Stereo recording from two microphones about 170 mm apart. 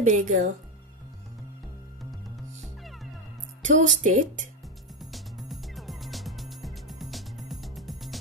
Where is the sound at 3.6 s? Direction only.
45° right (ahead or behind).